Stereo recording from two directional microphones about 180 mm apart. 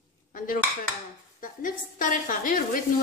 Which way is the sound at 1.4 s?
50° left (ahead or behind).